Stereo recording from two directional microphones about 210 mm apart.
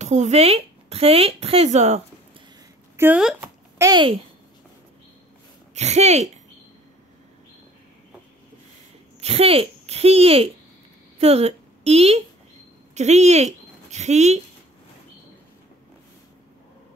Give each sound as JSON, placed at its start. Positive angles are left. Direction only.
{"t": 0.0, "sound": "speech", "side_deg": -35}
{"t": 3.0, "sound": "a woman's voice", "side_deg": -5}
{"t": 5.8, "sound": "speech", "side_deg": -30}
{"t": 9.2, "sound": "a woman's voice", "side_deg": -30}